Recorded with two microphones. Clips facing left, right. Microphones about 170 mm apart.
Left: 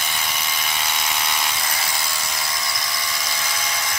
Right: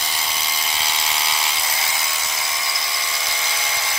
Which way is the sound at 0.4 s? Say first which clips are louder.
Even; 20° right (ahead or behind).